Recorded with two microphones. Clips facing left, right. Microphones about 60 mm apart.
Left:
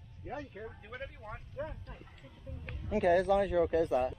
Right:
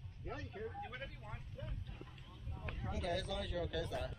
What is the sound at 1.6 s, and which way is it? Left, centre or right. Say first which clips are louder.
Vehicle: left 9 dB; left.